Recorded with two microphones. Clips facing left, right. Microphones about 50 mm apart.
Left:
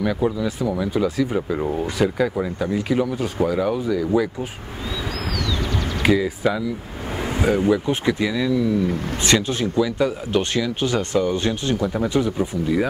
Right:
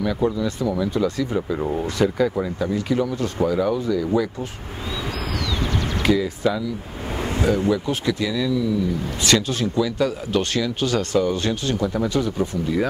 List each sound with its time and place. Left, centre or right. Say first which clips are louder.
0.0 s speech: even; centre
6.0 s speech: left 1 dB; centre